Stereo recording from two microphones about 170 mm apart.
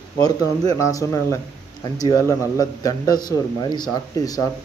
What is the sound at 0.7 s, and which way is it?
A man's voice, 20° left (ahead or behind).